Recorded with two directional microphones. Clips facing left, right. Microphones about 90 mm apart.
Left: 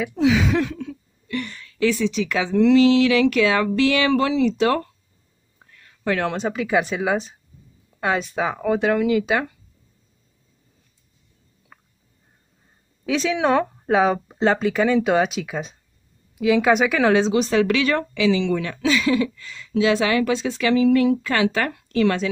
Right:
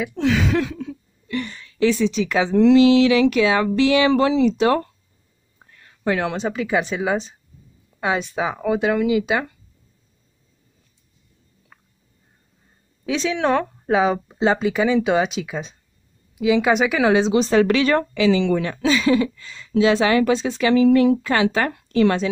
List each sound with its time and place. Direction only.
0.1 s speech: 5° left (ahead or behind)
0.7 s a sound: 25° right (ahead or behind)
3.0 s speech: 25° right (ahead or behind)
5.6 s a sound: 25° right (ahead or behind)
6.2 s speech: centre (ahead or behind)
13.0 s a woman's voice: 5° left (ahead or behind)
17.3 s speech: 25° right (ahead or behind); by 18.6 s 45° right (ahead or behind)
18.6 s speech: 30° right (ahead or behind)